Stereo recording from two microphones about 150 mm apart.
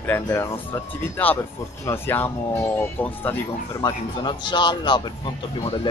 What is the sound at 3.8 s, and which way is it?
Speech, 30° left (ahead or behind).